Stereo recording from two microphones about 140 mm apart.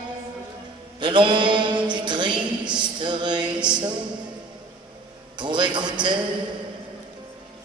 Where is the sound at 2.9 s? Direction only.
35° right (ahead or behind).